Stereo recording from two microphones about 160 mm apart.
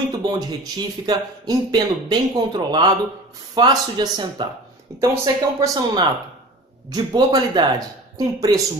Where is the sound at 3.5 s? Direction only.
25° right (ahead or behind).